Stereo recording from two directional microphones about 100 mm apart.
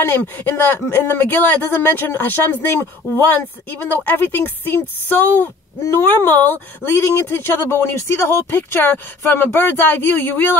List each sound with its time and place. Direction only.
0.0 s speech: 20° left (ahead or behind)